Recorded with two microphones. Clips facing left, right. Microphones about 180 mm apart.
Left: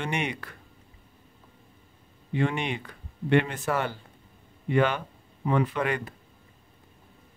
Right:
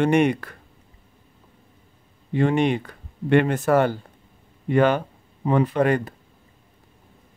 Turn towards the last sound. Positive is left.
turn(degrees=-40)  # may be behind; listen again after turning